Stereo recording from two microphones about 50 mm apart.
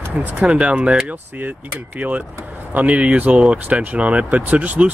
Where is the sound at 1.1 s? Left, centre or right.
Right.